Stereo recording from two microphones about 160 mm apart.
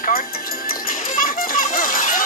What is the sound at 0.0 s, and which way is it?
Music, 65° left (ahead or behind).